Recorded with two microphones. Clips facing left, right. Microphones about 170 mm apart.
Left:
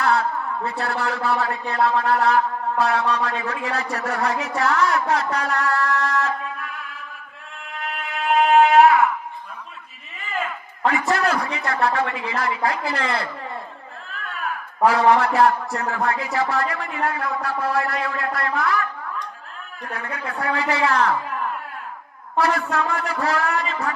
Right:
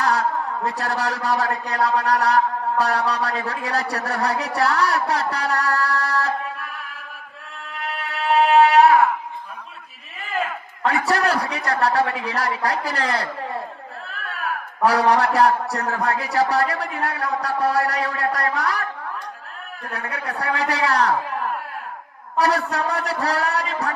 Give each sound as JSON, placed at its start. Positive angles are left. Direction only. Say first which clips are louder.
{"t": 0.0, "sound": "a man's voice", "louder": "even", "side_deg": -40}
{"t": 8.4, "sound": "a sound", "louder": "even", "side_deg": -35}
{"t": 10.9, "sound": "a man's voice", "louder": "right 1 dB", "side_deg": -40}
{"t": 14.9, "sound": "a man's voice", "louder": "left 1 dB", "side_deg": -40}
{"t": 19.9, "sound": "a man's voice", "louder": "right 1 dB", "side_deg": -35}
{"t": 22.4, "sound": "a man's voice", "louder": "right 1 dB", "side_deg": -40}